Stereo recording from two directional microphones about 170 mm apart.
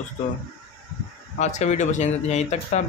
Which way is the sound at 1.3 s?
45° left (ahead or behind).